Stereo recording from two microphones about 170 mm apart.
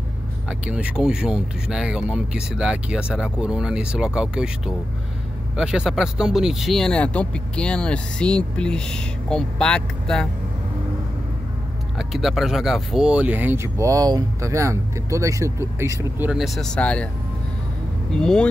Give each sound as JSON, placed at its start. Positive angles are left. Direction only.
{"t": 0.5, "sound": "speech", "side_deg": -5}
{"t": 12.0, "sound": "speech", "side_deg": 0}
{"t": 16.3, "sound": "speech", "side_deg": 0}
{"t": 18.1, "sound": "speech", "side_deg": 5}